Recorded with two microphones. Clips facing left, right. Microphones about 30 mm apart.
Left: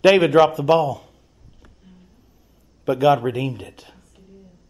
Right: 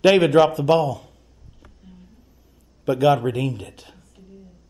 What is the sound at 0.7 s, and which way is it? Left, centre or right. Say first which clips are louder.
Speech: left 1 dB; centre.